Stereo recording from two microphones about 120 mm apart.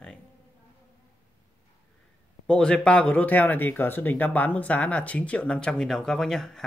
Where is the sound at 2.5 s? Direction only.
5° left (ahead or behind).